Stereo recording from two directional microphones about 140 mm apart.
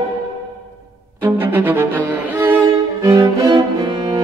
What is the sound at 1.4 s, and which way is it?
Cello, 15° right (ahead or behind).